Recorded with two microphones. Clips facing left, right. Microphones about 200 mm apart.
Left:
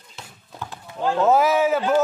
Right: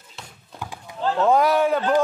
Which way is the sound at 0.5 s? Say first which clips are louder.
Even; 10° right (ahead or behind).